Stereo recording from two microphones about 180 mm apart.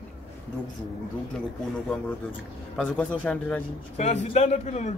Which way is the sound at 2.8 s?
5° left (ahead or behind).